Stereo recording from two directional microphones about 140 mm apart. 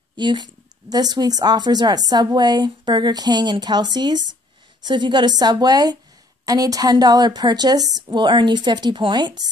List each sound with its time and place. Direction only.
0.1 s a woman's voice: 30° right (ahead or behind)